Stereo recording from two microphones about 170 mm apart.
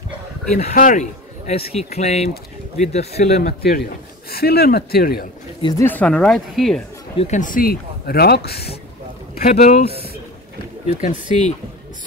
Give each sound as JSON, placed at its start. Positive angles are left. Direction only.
{"t": 0.5, "sound": "a man's voice", "side_deg": 40}
{"t": 4.3, "sound": "speech", "side_deg": 65}
{"t": 5.6, "sound": "speech", "side_deg": 25}
{"t": 5.9, "sound": "speech", "side_deg": 5}
{"t": 7.2, "sound": "speech", "side_deg": 45}
{"t": 9.5, "sound": "speech", "side_deg": 45}